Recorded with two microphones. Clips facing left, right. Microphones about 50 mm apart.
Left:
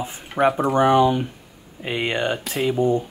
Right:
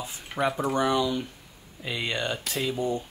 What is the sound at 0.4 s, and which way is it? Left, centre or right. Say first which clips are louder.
Speech: left 8 dB; left.